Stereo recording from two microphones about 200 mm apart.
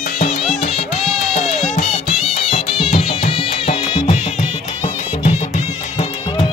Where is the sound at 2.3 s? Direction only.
30° left (ahead or behind).